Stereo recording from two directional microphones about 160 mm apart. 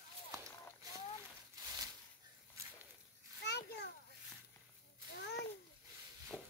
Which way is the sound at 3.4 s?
90° left.